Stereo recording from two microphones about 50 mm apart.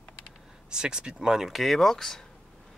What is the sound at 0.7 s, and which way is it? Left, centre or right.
Speech, centre.